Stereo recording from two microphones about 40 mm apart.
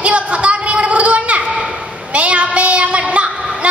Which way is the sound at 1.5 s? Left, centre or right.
Centre.